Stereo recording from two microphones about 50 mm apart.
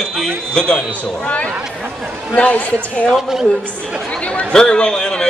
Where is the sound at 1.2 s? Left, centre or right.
Left.